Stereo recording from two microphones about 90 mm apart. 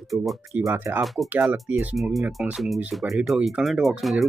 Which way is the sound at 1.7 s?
15° right (ahead or behind).